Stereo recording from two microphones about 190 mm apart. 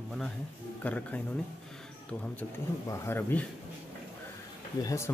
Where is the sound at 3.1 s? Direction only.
10° left (ahead or behind).